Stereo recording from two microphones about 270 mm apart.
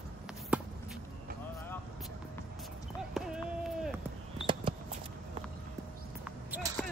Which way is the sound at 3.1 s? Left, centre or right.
Centre.